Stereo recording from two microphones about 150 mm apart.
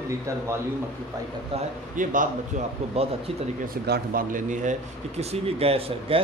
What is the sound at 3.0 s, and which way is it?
Speech, 40° right (ahead or behind).